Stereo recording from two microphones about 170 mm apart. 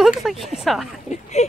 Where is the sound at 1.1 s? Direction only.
40° left (ahead or behind).